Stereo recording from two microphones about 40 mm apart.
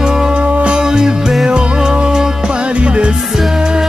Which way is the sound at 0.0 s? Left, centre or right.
Centre.